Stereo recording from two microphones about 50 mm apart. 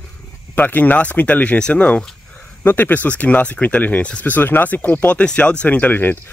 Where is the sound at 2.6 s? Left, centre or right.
Left.